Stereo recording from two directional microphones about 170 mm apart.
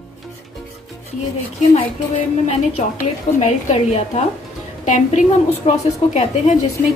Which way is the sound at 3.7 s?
40° left (ahead or behind).